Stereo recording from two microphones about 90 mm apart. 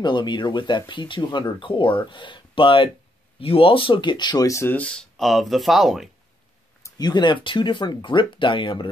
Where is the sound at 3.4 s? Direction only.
90° left; by 4.4 s 55° left (ahead or behind).